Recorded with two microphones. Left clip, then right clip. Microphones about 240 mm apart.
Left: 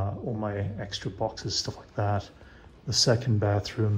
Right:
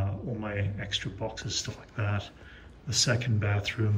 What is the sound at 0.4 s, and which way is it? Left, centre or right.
Speech, centre.